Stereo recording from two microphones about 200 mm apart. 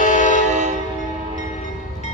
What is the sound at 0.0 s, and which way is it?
Train, 40° left (ahead or behind).